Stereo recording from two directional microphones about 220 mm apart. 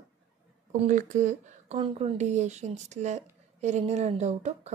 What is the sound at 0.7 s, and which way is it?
Speech, 35° right (ahead or behind).